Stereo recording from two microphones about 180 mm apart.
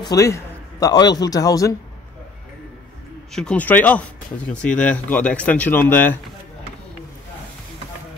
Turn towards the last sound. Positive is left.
turn(degrees=10)  # may be behind; listen again after turning